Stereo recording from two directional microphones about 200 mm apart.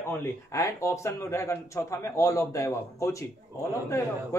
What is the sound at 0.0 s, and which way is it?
Speech, 10° left (ahead or behind).